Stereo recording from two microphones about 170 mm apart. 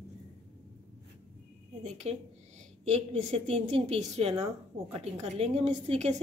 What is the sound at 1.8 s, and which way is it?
A woman's voice, 40° right (ahead or behind).